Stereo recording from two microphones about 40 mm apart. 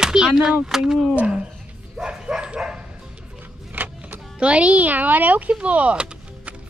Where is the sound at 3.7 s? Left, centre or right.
Right.